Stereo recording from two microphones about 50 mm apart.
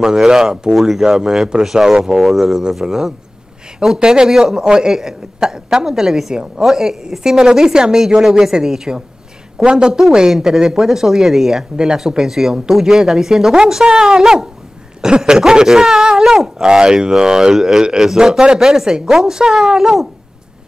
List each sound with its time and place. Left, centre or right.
0.0 s speech: centre